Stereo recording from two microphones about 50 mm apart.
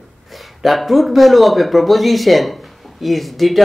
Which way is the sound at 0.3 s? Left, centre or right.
Centre.